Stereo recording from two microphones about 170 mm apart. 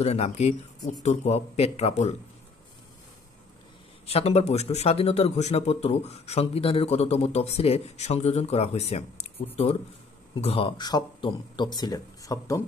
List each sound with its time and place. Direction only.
0.0 s a man's voice: 40° left (ahead or behind)
4.0 s a man's voice: 35° left (ahead or behind); by 12.6 s 20° left (ahead or behind)